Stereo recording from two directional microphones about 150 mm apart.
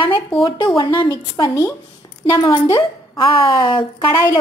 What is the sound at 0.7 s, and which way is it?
A woman's voice, 35° left (ahead or behind).